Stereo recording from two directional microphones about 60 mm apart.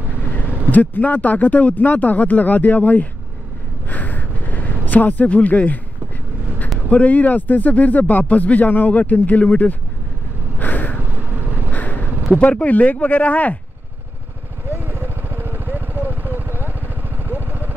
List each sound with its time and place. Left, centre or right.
0.7 s speech: left
3.9 s a sound: left
6.9 s speech: left
10.6 s a sound: left
11.0 s vehicle: right
11.7 s crow: left
12.4 s speech: left
14.7 s vehicle: right